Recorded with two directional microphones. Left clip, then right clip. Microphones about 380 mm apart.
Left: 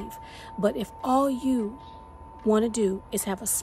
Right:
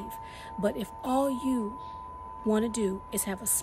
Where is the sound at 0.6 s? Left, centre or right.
Centre.